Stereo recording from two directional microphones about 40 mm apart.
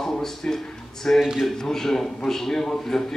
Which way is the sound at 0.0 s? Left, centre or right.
Centre.